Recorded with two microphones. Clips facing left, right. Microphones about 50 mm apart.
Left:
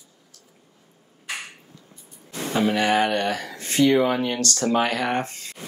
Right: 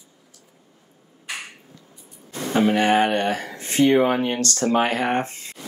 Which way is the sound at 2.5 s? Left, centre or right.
Right.